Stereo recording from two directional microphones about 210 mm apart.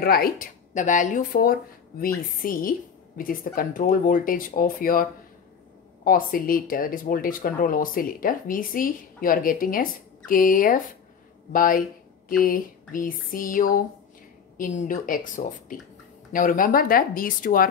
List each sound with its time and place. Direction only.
0.0 s speech: 45° left (ahead or behind)
6.0 s speech: 40° left (ahead or behind)